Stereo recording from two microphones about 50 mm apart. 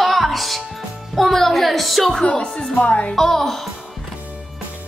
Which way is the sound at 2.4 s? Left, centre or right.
Centre.